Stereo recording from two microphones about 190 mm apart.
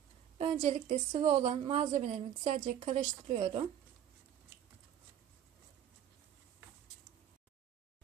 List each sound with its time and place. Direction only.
0.4 s a woman's voice: 35° right (ahead or behind)